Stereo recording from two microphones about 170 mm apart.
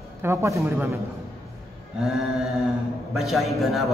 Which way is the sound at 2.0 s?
Centre (ahead or behind).